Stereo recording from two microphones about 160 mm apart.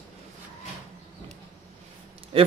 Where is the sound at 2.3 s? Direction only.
35° right (ahead or behind).